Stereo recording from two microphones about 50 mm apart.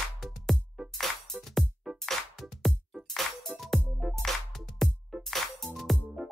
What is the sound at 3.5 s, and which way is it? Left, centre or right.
Music, centre.